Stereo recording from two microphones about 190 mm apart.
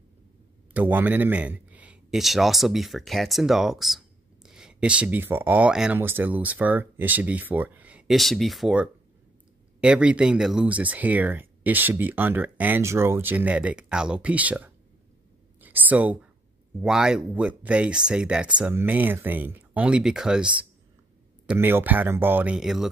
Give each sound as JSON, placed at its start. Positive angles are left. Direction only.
{"t": 0.7, "sound": "a man's voice", "side_deg": -10}